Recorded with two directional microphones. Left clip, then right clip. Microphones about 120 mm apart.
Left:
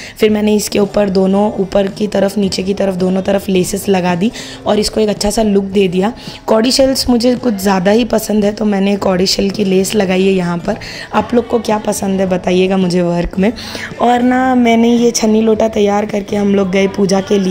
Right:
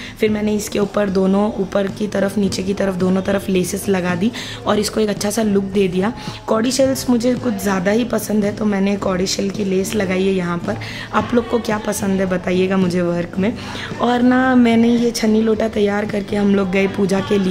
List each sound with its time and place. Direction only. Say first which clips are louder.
0.2 s speech: left 7 dB; 55° left (ahead or behind); by 1.2 s 40° left (ahead or behind)
1.2 s speech: left 5 dB; 20° left (ahead or behind)
1.7 s a woman's voice: left 6 dB; 35° left (ahead or behind)
13.9 s speech: left 5 dB; 25° left (ahead or behind)
15.0 s speech: left 5 dB; 40° left (ahead or behind); by 17.4 s 20° left (ahead or behind)